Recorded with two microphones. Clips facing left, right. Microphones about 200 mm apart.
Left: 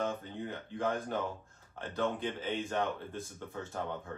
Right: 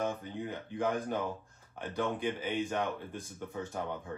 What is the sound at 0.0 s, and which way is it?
Speech, 15° right (ahead or behind).